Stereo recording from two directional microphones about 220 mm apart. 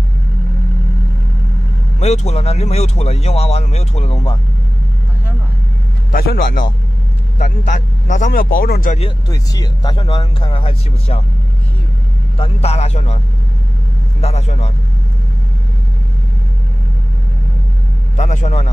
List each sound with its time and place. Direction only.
2.0 s speech: 30° left (ahead or behind)
6.1 s a man's voice: 40° left (ahead or behind)
9.3 s speech: 15° left (ahead or behind)
12.4 s speech: 30° left (ahead or behind)
14.2 s speech: 30° left (ahead or behind)
18.1 s a man's voice: 35° left (ahead or behind)